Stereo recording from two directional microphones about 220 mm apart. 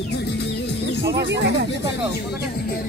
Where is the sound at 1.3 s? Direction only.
50° right (ahead or behind).